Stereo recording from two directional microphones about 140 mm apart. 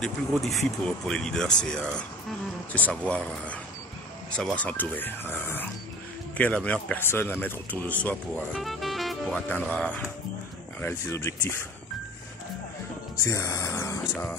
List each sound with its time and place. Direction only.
0.0 s speech: centre (ahead or behind)
8.4 s speech: centre (ahead or behind); by 11.5 s 20° left (ahead or behind)
13.2 s speech: 25° left (ahead or behind)